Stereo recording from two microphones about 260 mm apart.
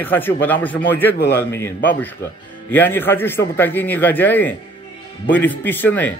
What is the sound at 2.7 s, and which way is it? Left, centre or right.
Speech, centre.